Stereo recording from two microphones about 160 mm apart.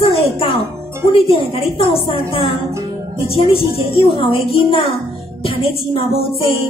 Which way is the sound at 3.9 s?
35° left (ahead or behind).